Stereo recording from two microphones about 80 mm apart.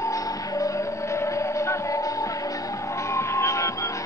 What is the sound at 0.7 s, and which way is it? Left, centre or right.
Music, left.